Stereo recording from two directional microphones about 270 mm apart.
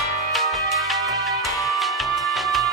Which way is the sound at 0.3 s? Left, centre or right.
Centre.